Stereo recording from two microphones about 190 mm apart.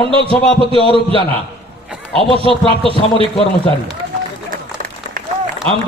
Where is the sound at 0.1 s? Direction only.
30° right (ahead or behind).